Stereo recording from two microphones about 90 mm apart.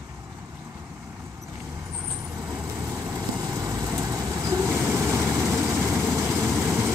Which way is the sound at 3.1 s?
40° right (ahead or behind).